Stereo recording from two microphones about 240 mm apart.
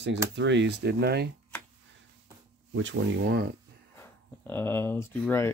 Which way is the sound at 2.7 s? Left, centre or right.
Right.